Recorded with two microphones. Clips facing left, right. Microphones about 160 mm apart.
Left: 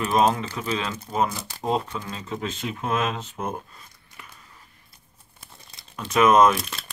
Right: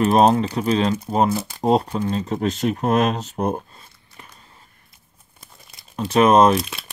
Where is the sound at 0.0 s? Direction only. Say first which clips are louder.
Right 6 dB; 35° right (ahead or behind).